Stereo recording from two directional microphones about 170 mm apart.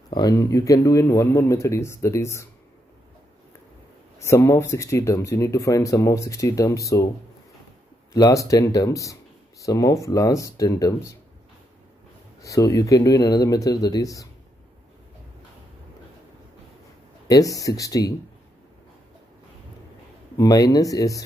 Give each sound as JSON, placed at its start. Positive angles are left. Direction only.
{"t": 0.1, "sound": "speech", "side_deg": 25}
{"t": 4.2, "sound": "speech", "side_deg": 15}
{"t": 8.1, "sound": "speech", "side_deg": 20}
{"t": 12.4, "sound": "speech", "side_deg": 20}
{"t": 17.3, "sound": "speech", "side_deg": 20}
{"t": 20.3, "sound": "speech", "side_deg": 20}